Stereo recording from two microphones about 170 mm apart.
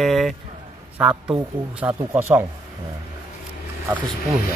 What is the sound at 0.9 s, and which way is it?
Speech, 10° right (ahead or behind).